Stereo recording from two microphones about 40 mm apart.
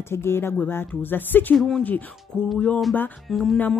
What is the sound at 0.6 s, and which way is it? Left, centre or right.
Speech, left.